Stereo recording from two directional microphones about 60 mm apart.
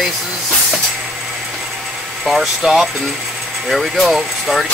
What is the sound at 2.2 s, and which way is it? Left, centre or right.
Speech, centre.